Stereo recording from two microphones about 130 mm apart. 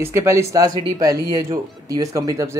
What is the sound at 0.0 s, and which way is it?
Speech, 20° right (ahead or behind).